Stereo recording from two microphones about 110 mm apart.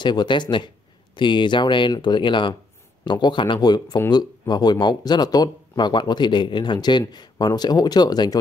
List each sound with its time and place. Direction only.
0.0 s speech: 40° left (ahead or behind)